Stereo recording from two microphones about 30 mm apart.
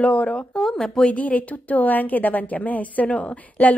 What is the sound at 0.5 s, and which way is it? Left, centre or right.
Speech, left.